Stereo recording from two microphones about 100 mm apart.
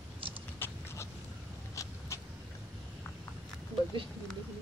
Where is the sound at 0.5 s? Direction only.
25° left (ahead or behind).